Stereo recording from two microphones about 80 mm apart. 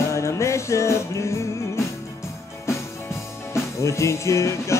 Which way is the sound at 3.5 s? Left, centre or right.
Left.